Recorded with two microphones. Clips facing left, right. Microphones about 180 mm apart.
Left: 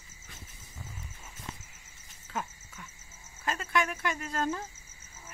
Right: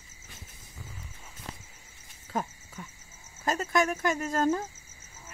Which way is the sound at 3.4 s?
40° right (ahead or behind).